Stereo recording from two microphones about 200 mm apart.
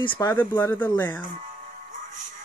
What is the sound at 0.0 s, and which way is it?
Speech, 25° left (ahead or behind).